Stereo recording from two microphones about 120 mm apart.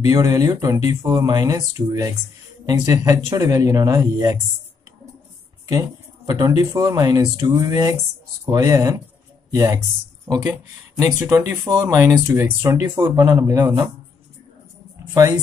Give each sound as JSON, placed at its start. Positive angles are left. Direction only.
{"t": 0.0, "sound": "speech", "side_deg": -30}
{"t": 5.7, "sound": "speech", "side_deg": -30}
{"t": 10.3, "sound": "speech", "side_deg": -10}
{"t": 11.0, "sound": "speech", "side_deg": -25}